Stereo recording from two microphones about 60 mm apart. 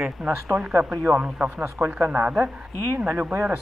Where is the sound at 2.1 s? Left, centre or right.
Right.